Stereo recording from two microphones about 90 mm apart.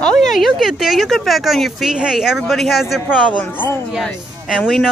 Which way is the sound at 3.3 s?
15° left (ahead or behind).